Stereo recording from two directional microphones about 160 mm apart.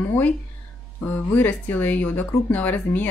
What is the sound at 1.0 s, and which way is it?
Speech, 10° left (ahead or behind).